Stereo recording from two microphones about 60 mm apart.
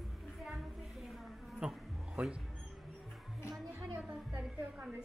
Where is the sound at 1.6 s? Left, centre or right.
Centre.